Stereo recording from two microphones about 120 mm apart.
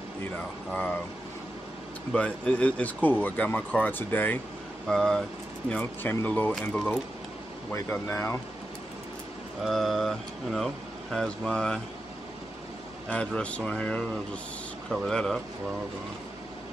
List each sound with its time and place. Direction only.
0.4 s speech: 10° left (ahead or behind)
2.1 s speech: 10° left (ahead or behind)
4.8 s speech: 5° left (ahead or behind)
7.7 s speech: 20° left (ahead or behind)
9.7 s speech: centre (ahead or behind)
13.1 s speech: 10° left (ahead or behind)